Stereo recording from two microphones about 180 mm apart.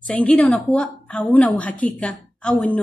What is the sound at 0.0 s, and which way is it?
A woman's voice, 5° left (ahead or behind).